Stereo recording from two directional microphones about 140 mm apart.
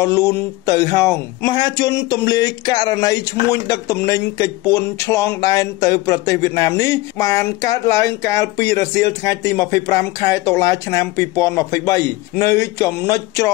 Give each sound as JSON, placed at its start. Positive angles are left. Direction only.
{"t": 0.0, "sound": "speech", "side_deg": 20}